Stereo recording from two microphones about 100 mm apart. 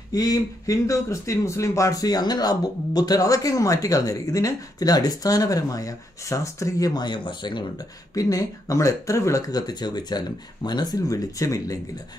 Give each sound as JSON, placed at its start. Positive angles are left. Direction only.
{"t": 0.1, "sound": "speech", "side_deg": 35}